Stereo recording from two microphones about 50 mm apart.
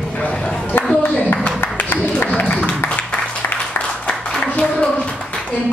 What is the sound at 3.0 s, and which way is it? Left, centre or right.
Applause, left.